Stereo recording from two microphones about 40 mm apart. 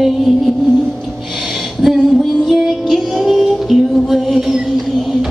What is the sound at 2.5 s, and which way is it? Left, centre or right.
Music, centre.